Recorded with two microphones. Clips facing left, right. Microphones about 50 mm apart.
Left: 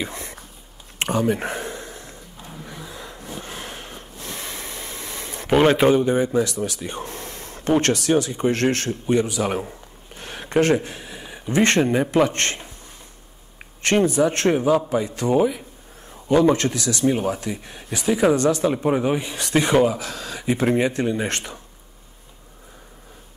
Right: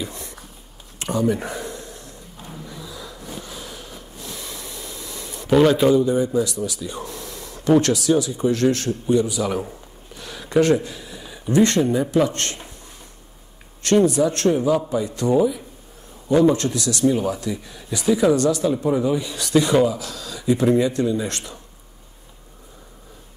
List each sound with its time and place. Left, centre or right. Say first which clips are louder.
0.0 s a sound: left 2 dB; left
2.6 s snort: left 1 dB; left
5.5 s speech: right 1 dB; left
10.1 s a sound: right 2 dB; left
11.6 s speech: left 2 dB; left
13.8 s speech: right 2 dB; left
14.5 s speech: left 1 dB; left
15.3 s speech: even; left
18.3 s speech: even; left